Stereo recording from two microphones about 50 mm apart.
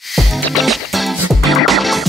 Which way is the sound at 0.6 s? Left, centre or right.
Centre.